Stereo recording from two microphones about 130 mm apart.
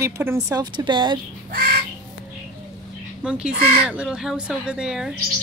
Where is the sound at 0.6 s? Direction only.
35° right (ahead or behind).